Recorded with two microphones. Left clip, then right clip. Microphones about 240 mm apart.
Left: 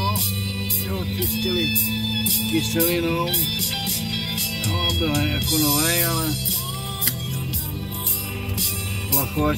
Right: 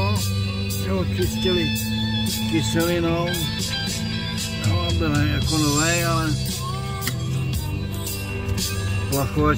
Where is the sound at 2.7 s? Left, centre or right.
Centre.